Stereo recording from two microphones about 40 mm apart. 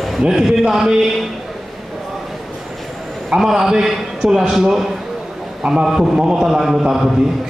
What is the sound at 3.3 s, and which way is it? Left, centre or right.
A man's voice, centre.